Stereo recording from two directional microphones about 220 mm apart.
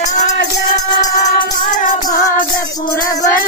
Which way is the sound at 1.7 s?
35° left (ahead or behind).